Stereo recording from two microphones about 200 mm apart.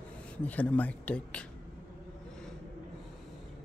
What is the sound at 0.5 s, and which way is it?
Speech, 10° left (ahead or behind).